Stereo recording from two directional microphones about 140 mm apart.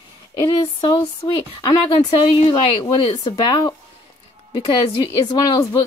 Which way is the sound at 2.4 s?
45° left (ahead or behind).